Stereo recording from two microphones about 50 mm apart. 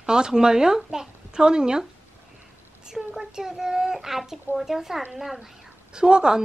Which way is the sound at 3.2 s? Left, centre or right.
Centre.